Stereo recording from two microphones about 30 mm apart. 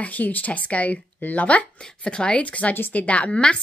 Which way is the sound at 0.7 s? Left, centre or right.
Left.